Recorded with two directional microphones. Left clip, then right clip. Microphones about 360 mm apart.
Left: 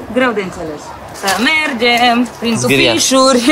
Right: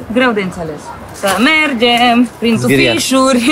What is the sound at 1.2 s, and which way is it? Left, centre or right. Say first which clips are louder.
Speech: right 2 dB; centre.